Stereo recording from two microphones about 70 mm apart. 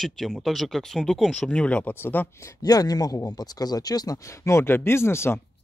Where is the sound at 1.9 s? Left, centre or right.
Left.